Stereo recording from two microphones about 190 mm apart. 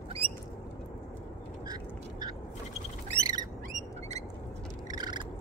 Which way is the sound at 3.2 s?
20° right (ahead or behind).